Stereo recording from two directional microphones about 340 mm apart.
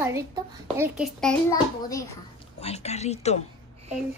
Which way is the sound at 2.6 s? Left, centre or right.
Centre.